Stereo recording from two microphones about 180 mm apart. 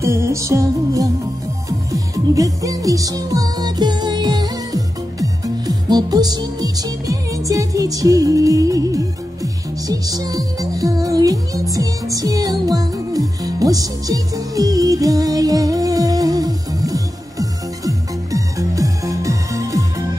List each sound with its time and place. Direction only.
0.0 s music: 15° right (ahead or behind)